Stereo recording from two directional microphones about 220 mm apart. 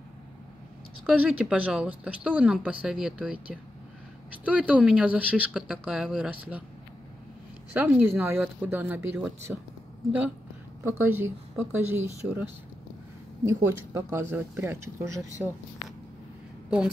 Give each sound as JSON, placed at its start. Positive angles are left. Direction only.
{"t": 1.0, "sound": "speech", "side_deg": -5}
{"t": 7.7, "sound": "speech", "side_deg": -10}
{"t": 10.8, "sound": "speech", "side_deg": -10}
{"t": 13.5, "sound": "speech", "side_deg": -10}